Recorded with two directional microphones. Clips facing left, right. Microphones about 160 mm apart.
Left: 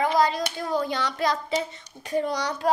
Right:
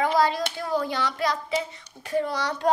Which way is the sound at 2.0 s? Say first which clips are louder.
Even; 15° left (ahead or behind).